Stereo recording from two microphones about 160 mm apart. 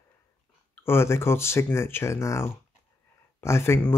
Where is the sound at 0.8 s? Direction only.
15° left (ahead or behind).